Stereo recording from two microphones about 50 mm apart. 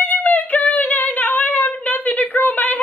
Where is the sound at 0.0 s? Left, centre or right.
Left.